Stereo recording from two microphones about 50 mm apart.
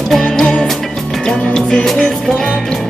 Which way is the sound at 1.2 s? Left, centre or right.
Centre.